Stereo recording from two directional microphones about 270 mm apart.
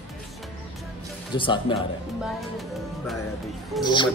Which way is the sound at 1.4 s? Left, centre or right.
Centre.